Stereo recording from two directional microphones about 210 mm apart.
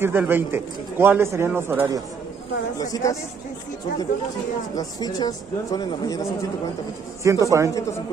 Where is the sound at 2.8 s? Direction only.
15° left (ahead or behind).